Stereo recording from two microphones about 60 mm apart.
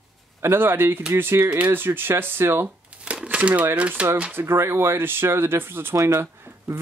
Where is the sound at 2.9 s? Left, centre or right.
Right.